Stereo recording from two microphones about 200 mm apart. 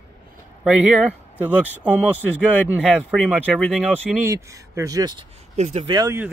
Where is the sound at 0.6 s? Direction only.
5° right (ahead or behind).